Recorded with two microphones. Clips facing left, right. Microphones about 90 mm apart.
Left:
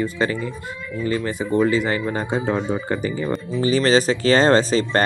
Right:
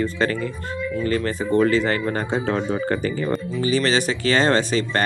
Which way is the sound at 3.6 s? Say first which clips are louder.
Left 4 dB; 35° left (ahead or behind).